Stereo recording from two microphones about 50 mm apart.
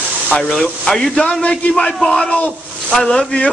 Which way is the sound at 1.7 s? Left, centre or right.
Centre.